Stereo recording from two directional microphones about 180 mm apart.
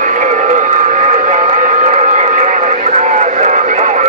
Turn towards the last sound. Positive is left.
turn(degrees=-40)  # may be behind; listen again after turning